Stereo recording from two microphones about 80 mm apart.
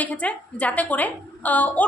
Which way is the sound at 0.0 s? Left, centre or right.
Centre.